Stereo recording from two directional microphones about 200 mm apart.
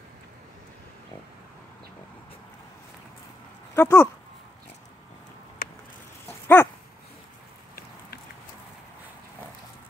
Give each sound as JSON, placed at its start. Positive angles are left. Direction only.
{"t": 3.7, "sound": "speech", "side_deg": 10}
{"t": 5.6, "sound": "a sound", "side_deg": 45}
{"t": 6.2, "sound": "dog", "side_deg": 10}